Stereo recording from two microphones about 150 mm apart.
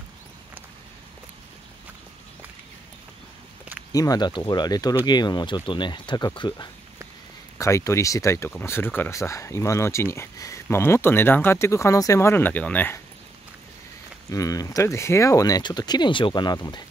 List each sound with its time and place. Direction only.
3.9 s speech: 25° left (ahead or behind)
14.3 s speech: 25° left (ahead or behind)